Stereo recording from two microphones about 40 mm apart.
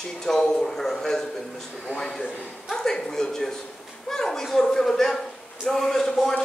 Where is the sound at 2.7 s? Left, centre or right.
Centre.